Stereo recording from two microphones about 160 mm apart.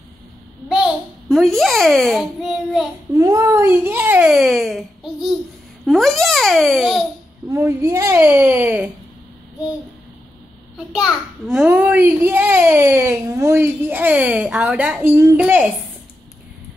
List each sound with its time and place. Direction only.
1.3 s a child's voice: centre (ahead or behind)
3.1 s a child's voice: 20° right (ahead or behind); by 7.1 s centre (ahead or behind)
7.4 s a child's voice: 15° right (ahead or behind)
11.1 s a child's voice: 5° right (ahead or behind)